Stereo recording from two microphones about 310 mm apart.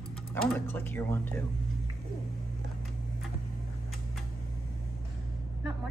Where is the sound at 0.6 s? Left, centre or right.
Centre.